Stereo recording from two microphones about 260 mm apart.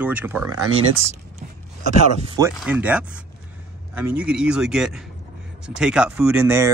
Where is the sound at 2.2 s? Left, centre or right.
Centre.